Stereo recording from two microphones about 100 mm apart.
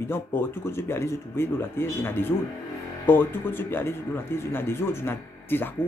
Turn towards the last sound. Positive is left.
turn(degrees=20)  # may be behind; listen again after turning